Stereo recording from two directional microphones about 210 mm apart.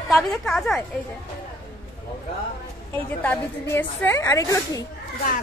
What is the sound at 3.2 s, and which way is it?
A woman's voice, 10° left (ahead or behind).